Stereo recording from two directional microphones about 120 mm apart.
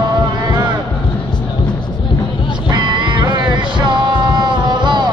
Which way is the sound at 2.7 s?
40° right (ahead or behind).